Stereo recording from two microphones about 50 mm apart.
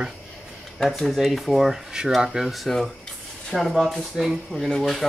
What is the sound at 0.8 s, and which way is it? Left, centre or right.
Speech, centre.